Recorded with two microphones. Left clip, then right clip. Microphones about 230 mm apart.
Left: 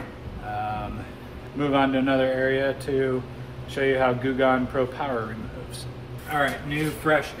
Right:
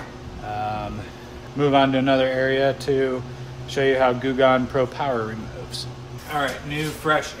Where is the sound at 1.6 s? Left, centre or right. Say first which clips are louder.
Right 4 dB; right.